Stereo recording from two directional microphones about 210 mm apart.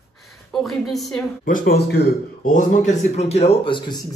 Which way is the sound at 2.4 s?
35° left (ahead or behind).